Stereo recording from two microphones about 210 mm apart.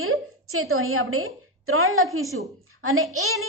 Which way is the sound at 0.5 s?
90° right.